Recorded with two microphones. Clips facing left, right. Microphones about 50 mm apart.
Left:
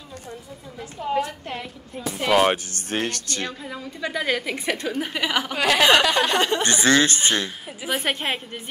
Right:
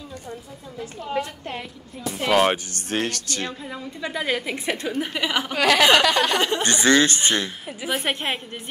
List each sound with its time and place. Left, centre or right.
2.1 s a woman's voice: centre
2.7 s speech: left
3.6 s a woman's voice: centre
5.6 s a sound: centre
6.6 s speech: left
7.6 s a woman's voice: centre